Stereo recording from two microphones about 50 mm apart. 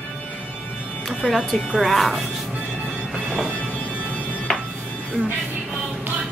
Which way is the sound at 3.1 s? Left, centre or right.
Centre.